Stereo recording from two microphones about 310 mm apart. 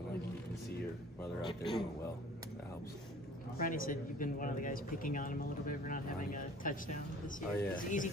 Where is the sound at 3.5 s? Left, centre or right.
Left.